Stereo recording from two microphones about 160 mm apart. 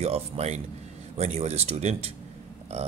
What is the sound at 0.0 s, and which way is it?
Speech, 40° right (ahead or behind).